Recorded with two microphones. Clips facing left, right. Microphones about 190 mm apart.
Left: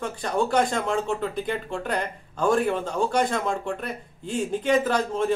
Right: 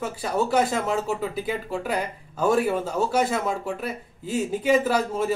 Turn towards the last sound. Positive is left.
turn(degrees=-5)  # may be behind; listen again after turning